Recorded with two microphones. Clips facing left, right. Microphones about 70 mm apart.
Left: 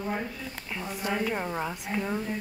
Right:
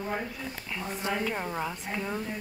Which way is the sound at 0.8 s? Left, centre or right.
Right.